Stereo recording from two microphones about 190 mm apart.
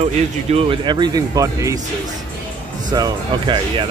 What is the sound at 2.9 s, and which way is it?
Speech, 20° right (ahead or behind).